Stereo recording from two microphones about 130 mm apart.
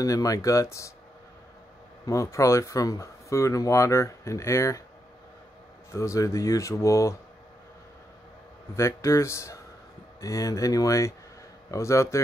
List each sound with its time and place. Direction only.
0.0 s speech: 25° left (ahead or behind)
2.0 s speech: 25° left (ahead or behind)
5.9 s speech: 20° left (ahead or behind)
8.7 s speech: 20° left (ahead or behind)